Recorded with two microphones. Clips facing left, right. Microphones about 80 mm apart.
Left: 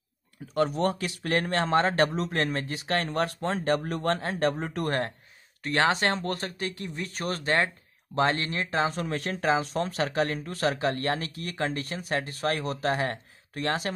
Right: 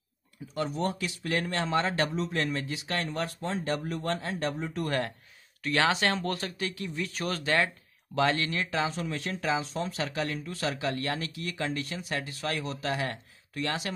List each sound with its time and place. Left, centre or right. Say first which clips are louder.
0.6 s speech: left 5 dB; left
5.6 s speech: left 2 dB; left
8.8 s speech: left 3 dB; left